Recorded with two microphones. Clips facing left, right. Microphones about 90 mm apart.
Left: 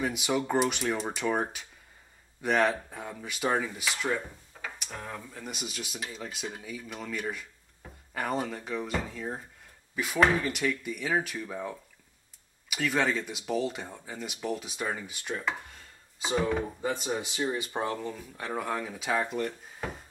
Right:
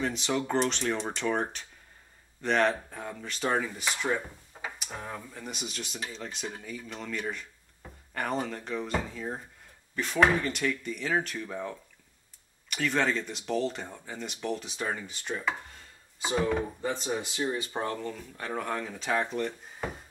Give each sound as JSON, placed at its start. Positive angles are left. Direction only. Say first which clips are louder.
{"t": 0.0, "sound": "speech", "louder": "left 1 dB", "side_deg": 10}
{"t": 4.1, "sound": "drawer open or close", "louder": "right 1 dB", "side_deg": -15}
{"t": 4.7, "sound": "speech", "louder": "right 1 dB", "side_deg": -10}
{"t": 5.3, "sound": "speech", "louder": "even", "side_deg": 0}
{"t": 16.6, "sound": "speech", "louder": "left 1 dB", "side_deg": 5}